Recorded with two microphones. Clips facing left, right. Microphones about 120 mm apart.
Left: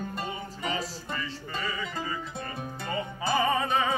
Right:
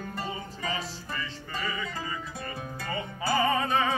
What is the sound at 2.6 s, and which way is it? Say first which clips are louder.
Music: left 2 dB; 20° left (ahead or behind).